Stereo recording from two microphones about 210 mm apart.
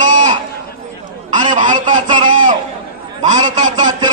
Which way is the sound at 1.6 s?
35° right (ahead or behind).